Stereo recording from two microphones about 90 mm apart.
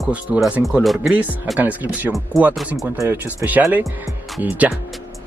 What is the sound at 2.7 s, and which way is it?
Speech, 30° right (ahead or behind).